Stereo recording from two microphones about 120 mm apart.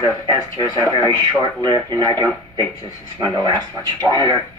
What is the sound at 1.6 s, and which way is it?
Speech, 35° right (ahead or behind).